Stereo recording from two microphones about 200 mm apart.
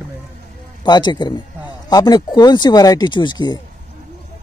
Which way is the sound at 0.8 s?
20° left (ahead or behind).